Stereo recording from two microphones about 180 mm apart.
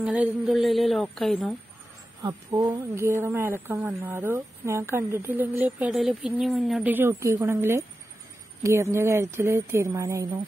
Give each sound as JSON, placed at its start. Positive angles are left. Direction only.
{"t": 0.0, "sound": "a woman's voice", "side_deg": -5}
{"t": 2.2, "sound": "a woman's voice", "side_deg": -20}